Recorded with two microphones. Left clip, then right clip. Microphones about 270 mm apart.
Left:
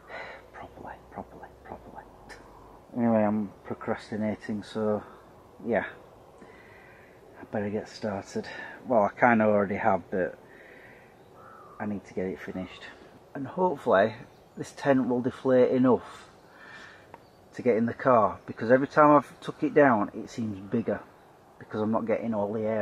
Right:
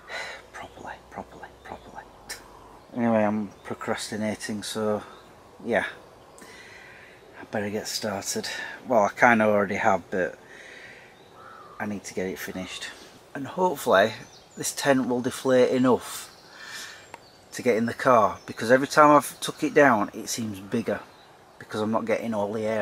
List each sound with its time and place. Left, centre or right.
0.8 s whispering: centre
3.0 s speech: centre
7.3 s speech: centre
11.8 s speech: centre
17.6 s speech: centre